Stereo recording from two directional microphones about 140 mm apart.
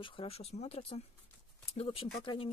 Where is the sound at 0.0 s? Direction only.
40° left (ahead or behind).